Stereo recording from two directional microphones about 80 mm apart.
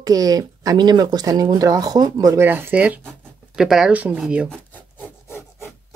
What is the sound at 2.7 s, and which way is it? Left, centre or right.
Speech, centre.